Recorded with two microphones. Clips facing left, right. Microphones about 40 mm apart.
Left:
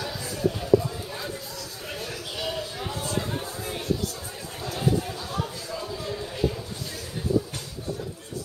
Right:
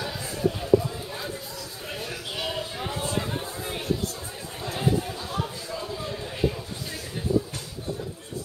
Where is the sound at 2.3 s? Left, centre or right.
Centre.